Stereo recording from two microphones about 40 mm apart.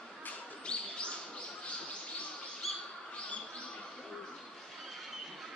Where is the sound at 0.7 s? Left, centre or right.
Left.